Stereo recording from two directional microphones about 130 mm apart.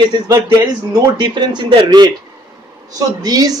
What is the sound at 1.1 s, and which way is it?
Speech, 35° right (ahead or behind).